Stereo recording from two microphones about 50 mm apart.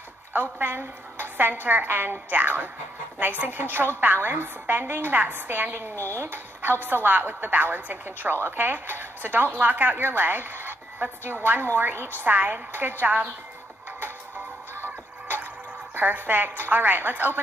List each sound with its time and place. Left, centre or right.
0.3 s a woman's voice: right
12.2 s a woman's voice: right
13.0 s speech: right
14.8 s music: right
15.9 s a woman's voice: right